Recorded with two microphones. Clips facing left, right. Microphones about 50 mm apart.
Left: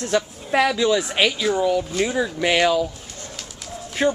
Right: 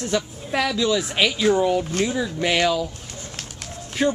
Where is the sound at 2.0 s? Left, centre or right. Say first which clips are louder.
Left 2 dB; centre.